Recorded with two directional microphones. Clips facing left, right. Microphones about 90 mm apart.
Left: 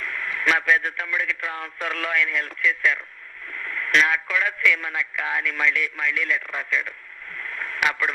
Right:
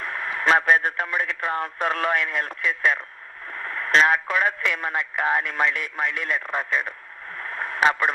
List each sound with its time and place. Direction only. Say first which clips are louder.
0.0 s a man's voice: right 1 dB; 35° right (ahead or behind)
3.5 s a man's voice: right 2 dB; 35° right (ahead or behind)
7.3 s radio: right 3 dB; 35° right (ahead or behind)